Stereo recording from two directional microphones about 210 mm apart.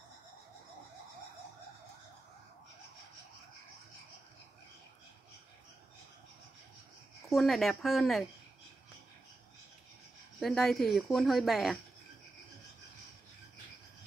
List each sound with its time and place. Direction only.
7.2 s a woman's voice: centre (ahead or behind)
10.4 s a woman's voice: centre (ahead or behind)